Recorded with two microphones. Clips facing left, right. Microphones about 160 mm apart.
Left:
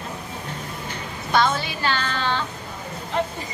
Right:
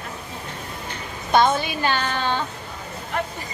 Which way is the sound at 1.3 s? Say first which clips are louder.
Right 3 dB; 20° right (ahead or behind).